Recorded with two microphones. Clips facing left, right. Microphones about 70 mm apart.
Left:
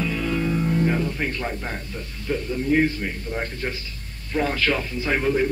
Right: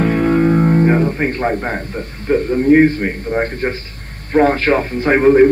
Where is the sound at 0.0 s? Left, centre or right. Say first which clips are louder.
Right 11 dB; right.